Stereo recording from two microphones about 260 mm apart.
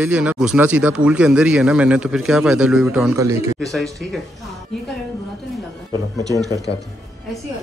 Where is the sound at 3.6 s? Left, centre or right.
Centre.